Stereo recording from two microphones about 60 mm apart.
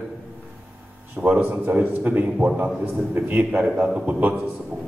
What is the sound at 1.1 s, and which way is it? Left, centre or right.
A man's voice, right.